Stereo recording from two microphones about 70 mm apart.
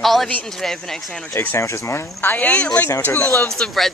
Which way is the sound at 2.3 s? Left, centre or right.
Centre.